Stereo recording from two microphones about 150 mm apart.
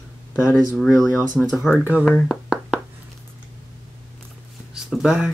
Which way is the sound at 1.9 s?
10° right (ahead or behind).